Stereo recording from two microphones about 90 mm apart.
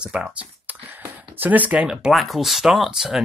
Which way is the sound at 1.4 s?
20° right (ahead or behind).